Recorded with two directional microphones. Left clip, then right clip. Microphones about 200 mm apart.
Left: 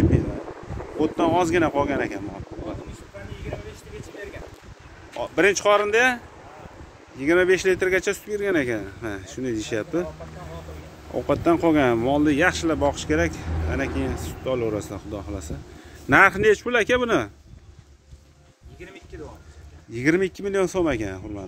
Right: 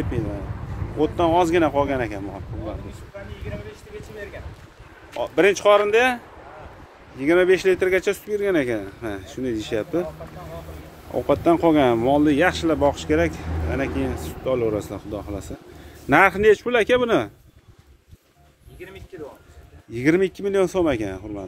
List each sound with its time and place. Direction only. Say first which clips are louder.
0.9 s speech: right 2 dB; centre (ahead or behind)
5.1 s speech: right 2 dB; centre (ahead or behind)
11.1 s speech: right 2 dB; centre (ahead or behind)
19.1 s a sound: right 3 dB; 30° right (ahead or behind)
19.9 s speech: right 2 dB; 5° right (ahead or behind)